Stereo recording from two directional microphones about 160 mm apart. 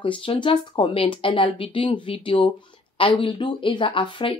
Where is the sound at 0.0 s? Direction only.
35° left (ahead or behind).